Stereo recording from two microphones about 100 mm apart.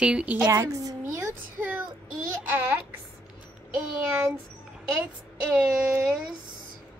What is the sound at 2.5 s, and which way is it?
Speech, 20° right (ahead or behind).